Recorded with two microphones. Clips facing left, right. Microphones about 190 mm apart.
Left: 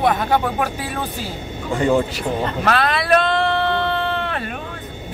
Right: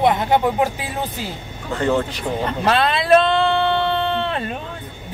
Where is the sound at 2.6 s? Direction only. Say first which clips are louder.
Right 2 dB; 25° right (ahead or behind).